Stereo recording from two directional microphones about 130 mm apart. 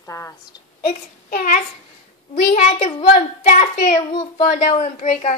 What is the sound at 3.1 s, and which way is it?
Child singing, 80° left.